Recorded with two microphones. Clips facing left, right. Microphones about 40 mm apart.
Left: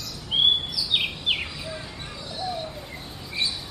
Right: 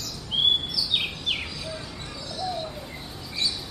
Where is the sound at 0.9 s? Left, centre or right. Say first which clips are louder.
Left 4 dB; centre.